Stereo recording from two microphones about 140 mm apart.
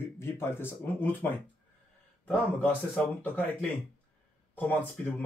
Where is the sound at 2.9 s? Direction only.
15° left (ahead or behind).